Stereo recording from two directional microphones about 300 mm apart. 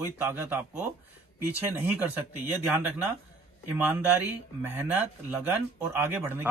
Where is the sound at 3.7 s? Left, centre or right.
Centre.